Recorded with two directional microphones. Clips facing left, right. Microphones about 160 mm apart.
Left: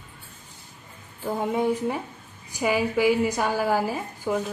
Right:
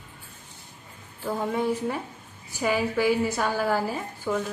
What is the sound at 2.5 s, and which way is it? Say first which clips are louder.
A woman's voice: left 2 dB; 15° left (ahead or behind).